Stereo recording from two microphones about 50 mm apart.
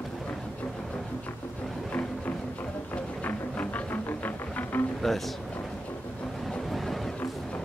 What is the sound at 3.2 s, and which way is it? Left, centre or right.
Music, left.